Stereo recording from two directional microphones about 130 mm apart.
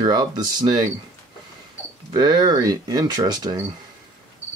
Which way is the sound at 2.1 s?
30° right (ahead or behind).